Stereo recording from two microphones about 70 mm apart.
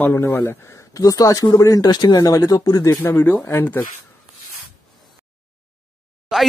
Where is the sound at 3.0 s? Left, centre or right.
Left.